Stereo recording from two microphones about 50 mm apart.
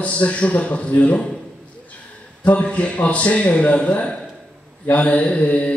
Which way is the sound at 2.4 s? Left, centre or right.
Left.